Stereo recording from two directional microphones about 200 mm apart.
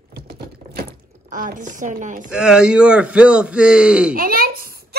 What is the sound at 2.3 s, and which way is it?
Speech, 5° right (ahead or behind).